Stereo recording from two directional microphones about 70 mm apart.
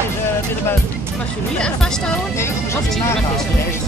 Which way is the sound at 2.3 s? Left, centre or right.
Left.